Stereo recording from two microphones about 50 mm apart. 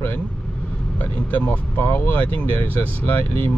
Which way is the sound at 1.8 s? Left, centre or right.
Left.